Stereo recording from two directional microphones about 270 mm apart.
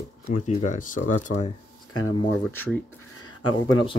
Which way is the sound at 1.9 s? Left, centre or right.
Left.